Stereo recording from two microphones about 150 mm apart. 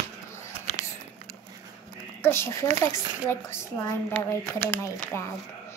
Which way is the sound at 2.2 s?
15° left (ahead or behind).